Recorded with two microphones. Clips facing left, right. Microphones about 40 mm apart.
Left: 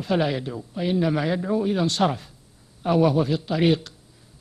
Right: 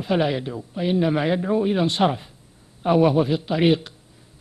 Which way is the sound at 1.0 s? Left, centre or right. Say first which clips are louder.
Right 3 dB; right.